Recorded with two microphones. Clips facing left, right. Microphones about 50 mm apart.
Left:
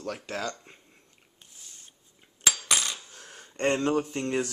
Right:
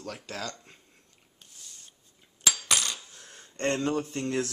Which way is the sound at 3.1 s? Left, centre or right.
Left.